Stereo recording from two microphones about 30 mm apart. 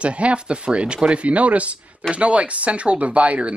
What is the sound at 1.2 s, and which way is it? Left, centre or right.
Speech, right.